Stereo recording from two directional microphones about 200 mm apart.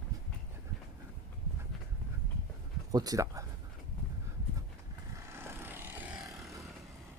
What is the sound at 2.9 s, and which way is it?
Speech, 20° right (ahead or behind).